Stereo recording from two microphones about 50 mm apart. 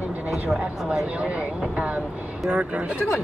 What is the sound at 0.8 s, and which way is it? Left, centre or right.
Speech, centre.